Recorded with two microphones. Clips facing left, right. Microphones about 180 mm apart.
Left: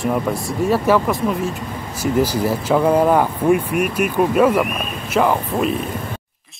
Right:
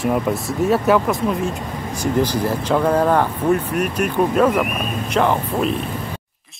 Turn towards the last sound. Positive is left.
turn(degrees=5)  # may be behind; listen again after turning